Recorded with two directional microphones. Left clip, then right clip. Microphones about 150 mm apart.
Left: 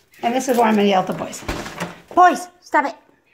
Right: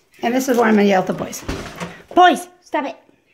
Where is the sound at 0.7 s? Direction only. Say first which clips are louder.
Right 1 dB; 40° right (ahead or behind).